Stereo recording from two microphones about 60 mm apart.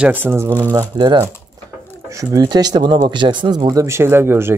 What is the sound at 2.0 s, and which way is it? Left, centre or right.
Speech, right.